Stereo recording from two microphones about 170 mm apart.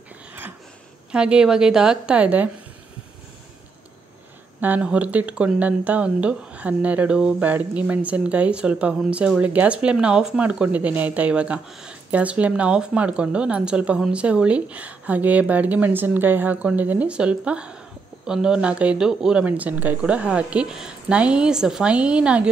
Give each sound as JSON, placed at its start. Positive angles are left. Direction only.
{"t": 1.1, "sound": "a woman's voice", "side_deg": -5}
{"t": 4.6, "sound": "speech", "side_deg": -10}